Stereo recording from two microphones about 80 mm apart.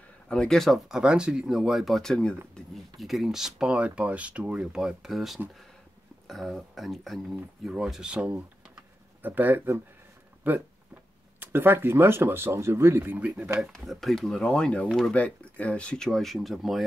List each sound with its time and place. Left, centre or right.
0.3 s speech: centre
0.8 s speech: centre
13.7 s speech: centre
15.1 s speech: centre